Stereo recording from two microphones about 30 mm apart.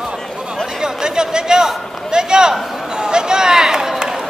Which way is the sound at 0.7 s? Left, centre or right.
Right.